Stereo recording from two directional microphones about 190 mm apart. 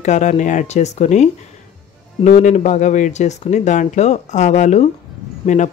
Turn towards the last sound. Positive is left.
turn(degrees=40)  # may be behind; listen again after turning